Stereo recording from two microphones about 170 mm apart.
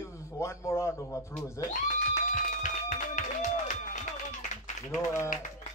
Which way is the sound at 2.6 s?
50° left (ahead or behind).